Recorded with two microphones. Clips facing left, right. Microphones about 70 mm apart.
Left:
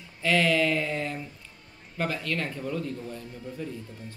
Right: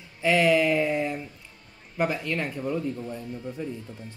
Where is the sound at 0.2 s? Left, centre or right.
Centre.